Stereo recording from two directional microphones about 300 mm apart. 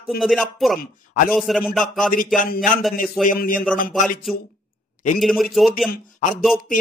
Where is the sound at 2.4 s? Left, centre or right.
Left.